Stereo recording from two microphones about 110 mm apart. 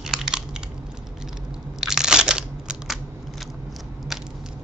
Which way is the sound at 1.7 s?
5° right (ahead or behind).